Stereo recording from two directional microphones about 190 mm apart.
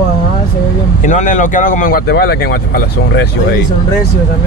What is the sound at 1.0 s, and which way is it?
Speech, 40° left (ahead or behind).